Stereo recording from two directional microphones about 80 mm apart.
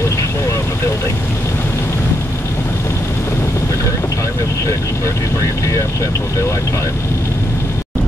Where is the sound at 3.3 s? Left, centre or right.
Left.